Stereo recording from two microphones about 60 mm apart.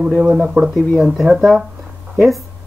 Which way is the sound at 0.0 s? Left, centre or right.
Right.